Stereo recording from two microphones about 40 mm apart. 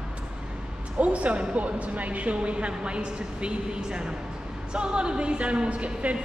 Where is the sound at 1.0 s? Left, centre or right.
Right.